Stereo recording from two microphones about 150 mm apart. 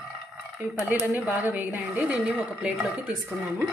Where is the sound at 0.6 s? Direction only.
10° right (ahead or behind).